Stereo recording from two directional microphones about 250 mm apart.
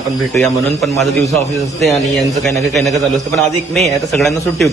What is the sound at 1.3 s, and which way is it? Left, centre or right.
A man's voice, centre.